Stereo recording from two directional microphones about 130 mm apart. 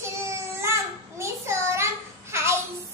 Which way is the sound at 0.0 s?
20° right (ahead or behind).